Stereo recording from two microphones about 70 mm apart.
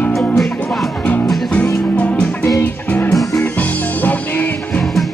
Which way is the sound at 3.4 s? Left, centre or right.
Left.